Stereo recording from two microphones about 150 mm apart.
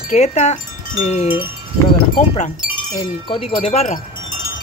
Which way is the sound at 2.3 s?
55° left (ahead or behind).